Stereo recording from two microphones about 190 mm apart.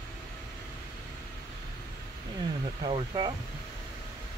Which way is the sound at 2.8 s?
20° right (ahead or behind).